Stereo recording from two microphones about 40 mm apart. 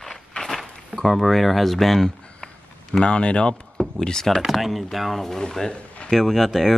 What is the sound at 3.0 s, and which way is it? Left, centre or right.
Speech, left.